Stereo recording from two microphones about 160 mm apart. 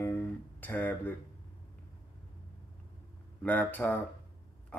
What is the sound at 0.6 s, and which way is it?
Speech, 10° left (ahead or behind).